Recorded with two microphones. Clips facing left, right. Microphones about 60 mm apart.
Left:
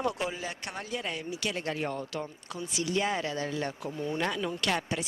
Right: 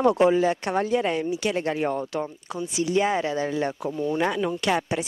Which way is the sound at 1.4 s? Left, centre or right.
Centre.